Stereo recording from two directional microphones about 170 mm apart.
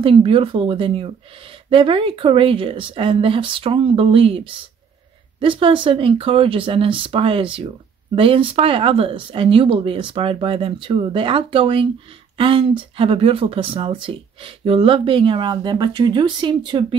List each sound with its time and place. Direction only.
0.0 s speech: 30° right (ahead or behind)
5.4 s speech: 30° right (ahead or behind)